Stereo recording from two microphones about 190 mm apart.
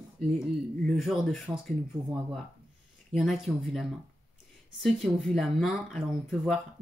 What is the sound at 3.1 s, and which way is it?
Speech, centre (ahead or behind).